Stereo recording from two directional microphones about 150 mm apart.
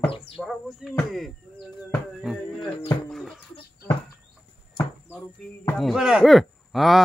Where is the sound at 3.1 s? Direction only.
Centre (ahead or behind).